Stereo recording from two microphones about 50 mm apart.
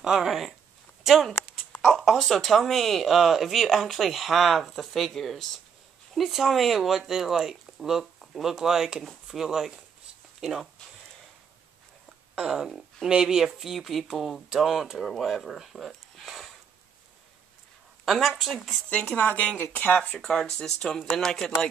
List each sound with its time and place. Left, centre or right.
0.0 s speech: centre
12.4 s speech: centre
18.0 s speech: centre
19.1 s speech: left
20.2 s speech: centre